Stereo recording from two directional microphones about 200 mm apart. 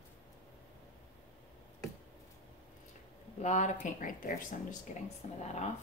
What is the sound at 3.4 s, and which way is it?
Speech, 35° left (ahead or behind).